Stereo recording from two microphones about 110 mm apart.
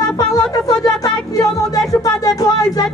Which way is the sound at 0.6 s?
35° left (ahead or behind).